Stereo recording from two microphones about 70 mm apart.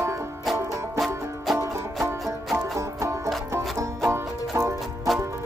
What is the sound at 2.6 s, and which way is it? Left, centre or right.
Music, right.